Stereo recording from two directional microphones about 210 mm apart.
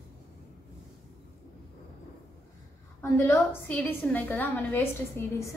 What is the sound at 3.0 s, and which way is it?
A woman's voice, 10° left (ahead or behind).